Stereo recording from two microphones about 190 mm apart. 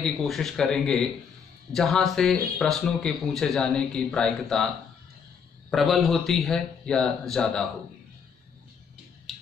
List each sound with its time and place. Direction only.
0.0 s a man's voice: centre (ahead or behind)
5.7 s a man's voice: centre (ahead or behind)
9.3 s a sound: centre (ahead or behind)